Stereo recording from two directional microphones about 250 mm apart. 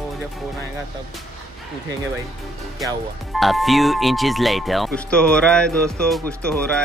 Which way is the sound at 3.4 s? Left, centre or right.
Centre.